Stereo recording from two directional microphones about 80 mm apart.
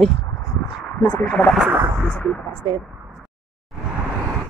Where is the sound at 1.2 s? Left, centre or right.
Centre.